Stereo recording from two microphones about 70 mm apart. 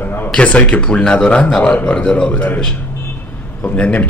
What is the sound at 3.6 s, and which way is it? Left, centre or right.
Speech, centre.